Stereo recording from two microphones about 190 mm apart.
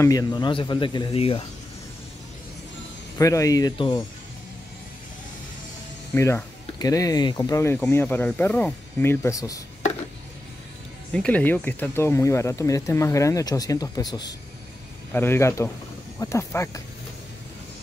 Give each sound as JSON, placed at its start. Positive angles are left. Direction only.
{"t": 0.0, "sound": "speech", "side_deg": 20}
{"t": 3.2, "sound": "speech", "side_deg": 15}
{"t": 6.1, "sound": "speech", "side_deg": 15}
{"t": 11.1, "sound": "speech", "side_deg": 5}